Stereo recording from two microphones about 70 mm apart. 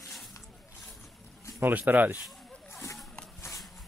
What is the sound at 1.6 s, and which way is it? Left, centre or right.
Speech, right.